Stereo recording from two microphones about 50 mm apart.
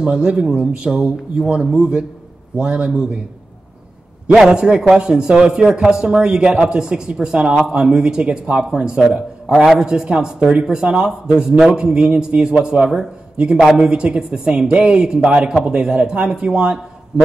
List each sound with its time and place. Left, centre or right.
0.0 s a woman's voice: centre
4.4 s a woman's voice: centre
17.1 s a sound: centre